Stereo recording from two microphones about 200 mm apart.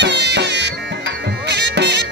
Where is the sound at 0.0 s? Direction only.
60° right (ahead or behind).